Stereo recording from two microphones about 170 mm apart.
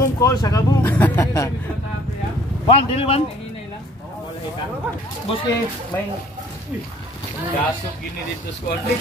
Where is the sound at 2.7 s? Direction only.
35° left (ahead or behind).